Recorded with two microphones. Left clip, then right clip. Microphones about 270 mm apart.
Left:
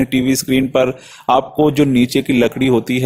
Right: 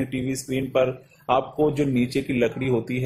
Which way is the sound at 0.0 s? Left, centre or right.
Left.